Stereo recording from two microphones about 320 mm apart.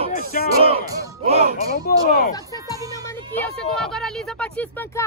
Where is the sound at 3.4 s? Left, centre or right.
Centre.